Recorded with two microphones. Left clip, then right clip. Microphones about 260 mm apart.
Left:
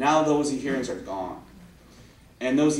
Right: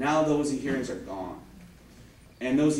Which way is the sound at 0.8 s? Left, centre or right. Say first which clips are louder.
Left 4 dB; centre.